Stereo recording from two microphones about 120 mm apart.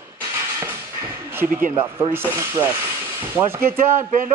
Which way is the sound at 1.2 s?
20° right (ahead or behind).